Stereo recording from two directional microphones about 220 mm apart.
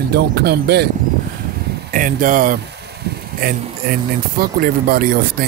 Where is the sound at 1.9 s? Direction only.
40° right (ahead or behind).